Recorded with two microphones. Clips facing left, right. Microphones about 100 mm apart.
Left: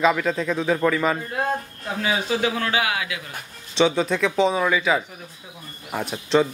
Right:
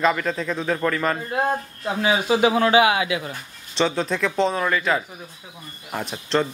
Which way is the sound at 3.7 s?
Centre (ahead or behind).